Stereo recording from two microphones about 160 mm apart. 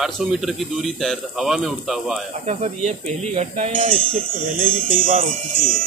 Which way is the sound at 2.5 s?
45° right (ahead or behind).